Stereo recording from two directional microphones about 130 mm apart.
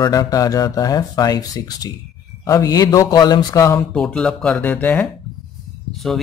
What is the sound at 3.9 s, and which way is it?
Speech, 5° left (ahead or behind).